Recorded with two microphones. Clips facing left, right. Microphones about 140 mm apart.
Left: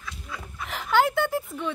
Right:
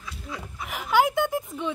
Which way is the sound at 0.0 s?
10° right (ahead or behind).